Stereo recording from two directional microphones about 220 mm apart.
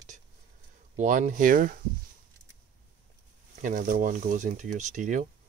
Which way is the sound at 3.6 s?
35° right (ahead or behind).